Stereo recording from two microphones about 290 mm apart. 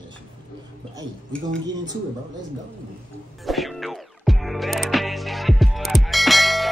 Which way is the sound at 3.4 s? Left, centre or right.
Centre.